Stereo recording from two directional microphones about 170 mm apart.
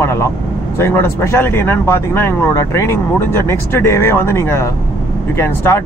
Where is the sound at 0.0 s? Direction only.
15° left (ahead or behind).